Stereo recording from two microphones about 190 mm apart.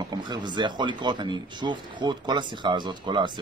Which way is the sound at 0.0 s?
20° right (ahead or behind).